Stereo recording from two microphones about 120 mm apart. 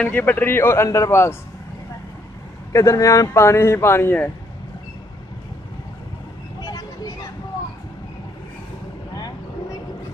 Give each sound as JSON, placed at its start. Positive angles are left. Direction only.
{"t": 0.0, "sound": "speech", "side_deg": 15}
{"t": 2.7, "sound": "speech", "side_deg": 25}
{"t": 6.6, "sound": "vehicle", "side_deg": 30}